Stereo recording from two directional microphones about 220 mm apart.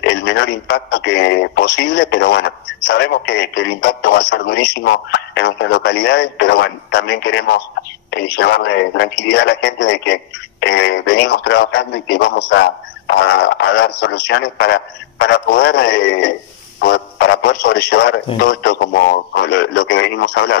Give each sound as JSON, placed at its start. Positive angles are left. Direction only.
{"t": 0.0, "sound": "speech", "side_deg": 50}